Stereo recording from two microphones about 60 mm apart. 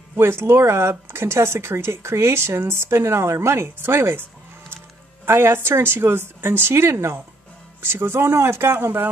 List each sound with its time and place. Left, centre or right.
0.1 s speech: right